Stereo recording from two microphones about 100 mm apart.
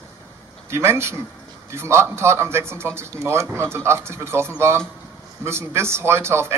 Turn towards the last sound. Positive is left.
turn(degrees=-25)  # may be behind; listen again after turning